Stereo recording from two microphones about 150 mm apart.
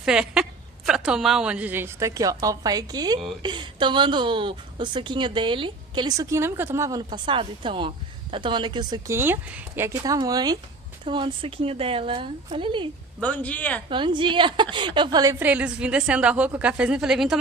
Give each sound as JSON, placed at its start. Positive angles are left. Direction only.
{"t": 0.0, "sound": "a woman's voice", "side_deg": -5}
{"t": 9.1, "sound": "a woman's voice", "side_deg": -15}
{"t": 13.2, "sound": "speech", "side_deg": 10}
{"t": 13.8, "sound": "a woman's voice", "side_deg": -35}
{"t": 15.3, "sound": "a woman's voice", "side_deg": -10}